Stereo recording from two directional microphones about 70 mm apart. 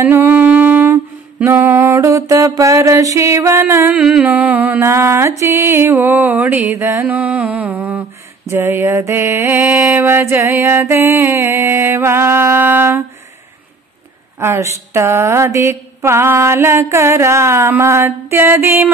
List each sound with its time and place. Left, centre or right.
0.0 s a sound: right
1.4 s mantra: right
3.6 s music: right
4.7 s mantra: right
5.4 s music: right
6.7 s mantra: right
7.1 s music: centre
8.5 s mantra: right
14.4 s mantra: right